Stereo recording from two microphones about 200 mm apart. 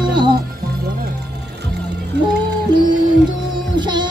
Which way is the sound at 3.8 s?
20° right (ahead or behind).